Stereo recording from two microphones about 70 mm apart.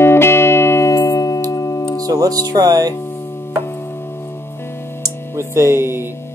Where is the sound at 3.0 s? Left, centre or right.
Left.